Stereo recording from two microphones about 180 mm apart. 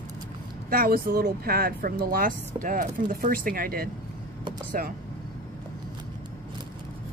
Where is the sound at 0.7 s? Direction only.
55° right (ahead or behind).